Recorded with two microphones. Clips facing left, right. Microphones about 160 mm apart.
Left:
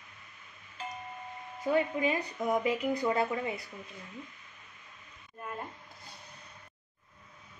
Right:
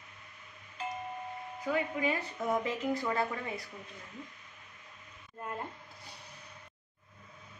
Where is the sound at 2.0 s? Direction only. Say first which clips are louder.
Left 2 dB; 15° left (ahead or behind).